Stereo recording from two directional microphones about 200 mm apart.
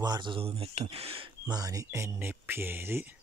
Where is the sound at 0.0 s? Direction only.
20° right (ahead or behind).